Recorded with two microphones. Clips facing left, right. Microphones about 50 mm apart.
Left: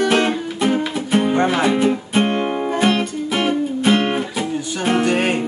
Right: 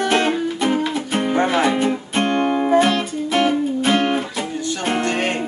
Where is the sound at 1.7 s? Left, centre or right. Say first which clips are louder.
Left 3 dB; centre.